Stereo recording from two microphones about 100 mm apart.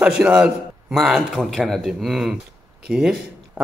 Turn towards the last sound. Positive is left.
turn(degrees=-5)  # may be behind; listen again after turning